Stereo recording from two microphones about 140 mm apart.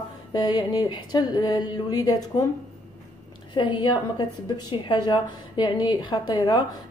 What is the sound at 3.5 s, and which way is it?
A woman's voice, 35° left (ahead or behind).